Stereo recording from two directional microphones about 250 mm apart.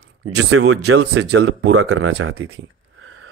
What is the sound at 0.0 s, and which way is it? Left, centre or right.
Speech, right.